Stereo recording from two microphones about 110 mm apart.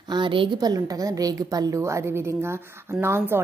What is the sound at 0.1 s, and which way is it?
Speech, 50° right (ahead or behind).